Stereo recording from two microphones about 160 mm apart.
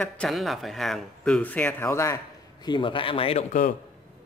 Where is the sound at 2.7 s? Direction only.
30° left (ahead or behind).